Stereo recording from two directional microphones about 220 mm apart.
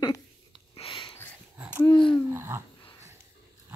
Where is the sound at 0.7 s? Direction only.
25° left (ahead or behind).